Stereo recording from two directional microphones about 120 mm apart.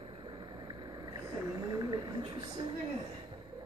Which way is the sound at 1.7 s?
30° right (ahead or behind).